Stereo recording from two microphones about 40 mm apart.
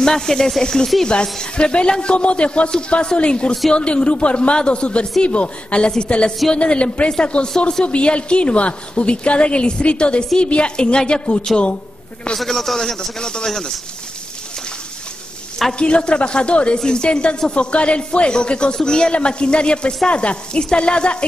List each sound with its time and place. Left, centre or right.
0.0 s a man's voice: centre
12.4 s a man's voice: centre
15.8 s a woman's voice: left